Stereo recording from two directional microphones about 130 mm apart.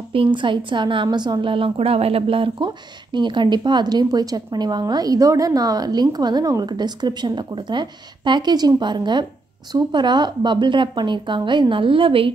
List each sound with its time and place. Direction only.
0.1 s a woman's voice: 40° right (ahead or behind)